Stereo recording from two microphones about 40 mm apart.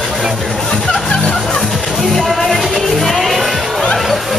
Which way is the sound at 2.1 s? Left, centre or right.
Centre.